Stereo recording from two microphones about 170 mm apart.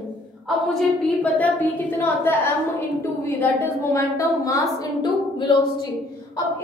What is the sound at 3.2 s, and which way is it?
A woman's voice, 15° left (ahead or behind).